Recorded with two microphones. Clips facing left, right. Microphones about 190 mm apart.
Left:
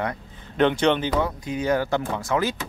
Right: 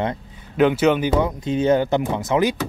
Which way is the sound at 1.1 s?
25° right (ahead or behind).